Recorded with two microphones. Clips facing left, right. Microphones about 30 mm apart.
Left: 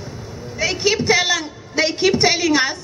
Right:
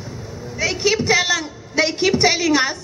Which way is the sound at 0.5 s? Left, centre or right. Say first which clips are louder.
Even; centre.